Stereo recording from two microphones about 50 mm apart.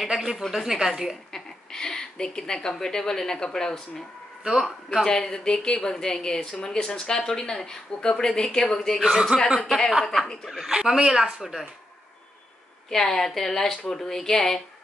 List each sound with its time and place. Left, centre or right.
0.1 s speech: centre
1.3 s a sound: centre
2.7 s a woman's voice: centre
4.4 s a man's voice: centre
5.0 s a woman's voice: centre
9.0 s a woman's voice: centre
10.0 s a woman's voice: centre
10.5 s speech: centre
12.9 s a woman's voice: centre